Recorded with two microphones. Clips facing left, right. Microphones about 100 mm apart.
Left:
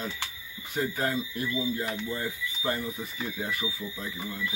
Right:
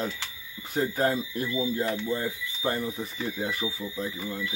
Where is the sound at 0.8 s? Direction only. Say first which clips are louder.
Right 3 dB; 35° right (ahead or behind).